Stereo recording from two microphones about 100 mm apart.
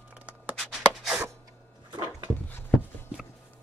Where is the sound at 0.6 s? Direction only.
5° right (ahead or behind).